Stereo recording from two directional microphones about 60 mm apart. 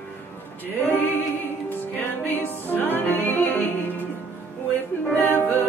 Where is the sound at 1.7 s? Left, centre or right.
Left.